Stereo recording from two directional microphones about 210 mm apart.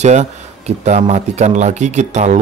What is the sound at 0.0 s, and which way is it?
Speech, 35° right (ahead or behind).